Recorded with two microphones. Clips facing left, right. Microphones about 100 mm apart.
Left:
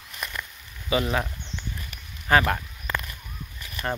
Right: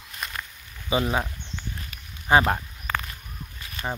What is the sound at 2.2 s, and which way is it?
Speech, 25° right (ahead or behind).